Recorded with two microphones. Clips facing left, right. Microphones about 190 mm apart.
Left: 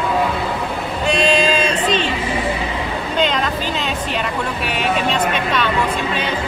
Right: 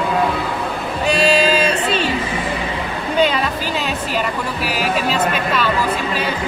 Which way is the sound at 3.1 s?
5° right (ahead or behind).